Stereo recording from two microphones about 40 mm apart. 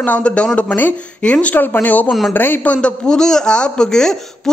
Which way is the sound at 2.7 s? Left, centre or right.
Left.